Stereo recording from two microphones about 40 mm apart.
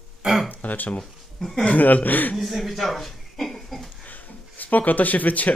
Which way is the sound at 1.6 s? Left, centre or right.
Left.